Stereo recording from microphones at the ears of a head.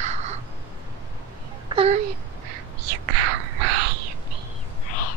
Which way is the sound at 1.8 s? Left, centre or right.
Right.